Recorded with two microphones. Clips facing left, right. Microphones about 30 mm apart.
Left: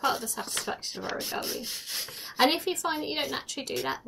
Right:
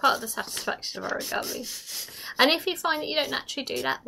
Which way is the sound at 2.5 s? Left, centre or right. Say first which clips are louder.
Right 3 dB; right.